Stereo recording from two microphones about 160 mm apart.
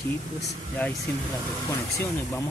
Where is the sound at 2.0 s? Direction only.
15° left (ahead or behind).